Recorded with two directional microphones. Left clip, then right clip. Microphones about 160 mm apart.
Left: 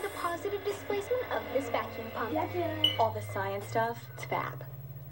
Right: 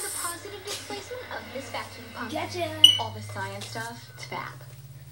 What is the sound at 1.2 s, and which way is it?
Speech, 5° left (ahead or behind).